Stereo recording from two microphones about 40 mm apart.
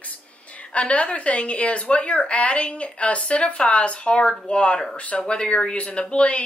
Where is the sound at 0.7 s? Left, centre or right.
Left.